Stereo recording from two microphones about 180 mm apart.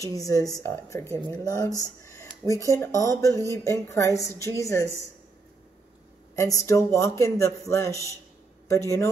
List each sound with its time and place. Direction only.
0.0 s a woman's voice: 20° left (ahead or behind)
1.8 s a sound: 15° left (ahead or behind)
2.7 s a man's voice: 20° left (ahead or behind)
6.3 s a man's voice: 15° left (ahead or behind)